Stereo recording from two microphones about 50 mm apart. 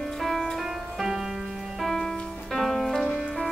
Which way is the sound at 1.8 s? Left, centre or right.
Centre.